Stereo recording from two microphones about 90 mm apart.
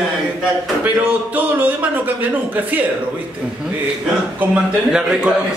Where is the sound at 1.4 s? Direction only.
20° right (ahead or behind).